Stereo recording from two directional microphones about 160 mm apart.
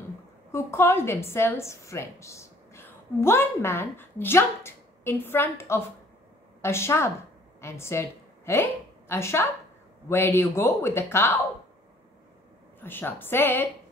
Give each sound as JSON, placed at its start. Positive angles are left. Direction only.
{"t": 0.5, "sound": "a woman's voice", "side_deg": 15}
{"t": 12.8, "sound": "speech", "side_deg": 15}